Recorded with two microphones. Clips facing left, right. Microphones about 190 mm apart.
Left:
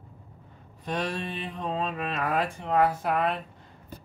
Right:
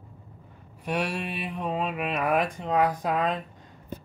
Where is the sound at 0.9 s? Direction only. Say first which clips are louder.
Right 2 dB; 10° right (ahead or behind).